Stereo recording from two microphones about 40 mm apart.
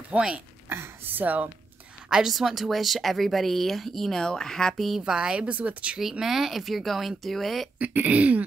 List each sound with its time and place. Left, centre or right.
0.1 s throat clearing: right
0.7 s speech: right
2.0 s a sound: centre
2.3 s speech: centre
4.7 s speech: centre
5.0 s a woman's voice: centre
5.5 s throat clearing: right
5.9 s speech: centre
7.9 s throat clearing: right